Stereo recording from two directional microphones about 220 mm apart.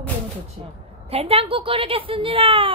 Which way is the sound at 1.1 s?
25° right (ahead or behind).